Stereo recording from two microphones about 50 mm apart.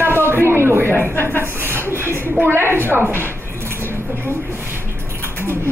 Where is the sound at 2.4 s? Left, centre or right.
Right.